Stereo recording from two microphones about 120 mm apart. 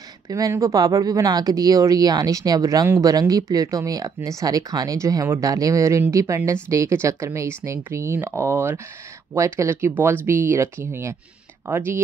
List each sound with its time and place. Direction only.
0.3 s speech: 25° right (ahead or behind)